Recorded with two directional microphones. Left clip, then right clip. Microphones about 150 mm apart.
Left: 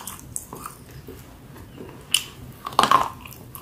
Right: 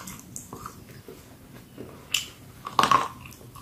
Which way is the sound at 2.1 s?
20° left (ahead or behind).